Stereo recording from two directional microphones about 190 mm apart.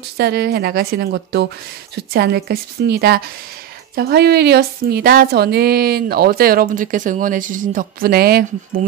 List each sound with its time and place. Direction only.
0.2 s a woman's voice: 55° right (ahead or behind)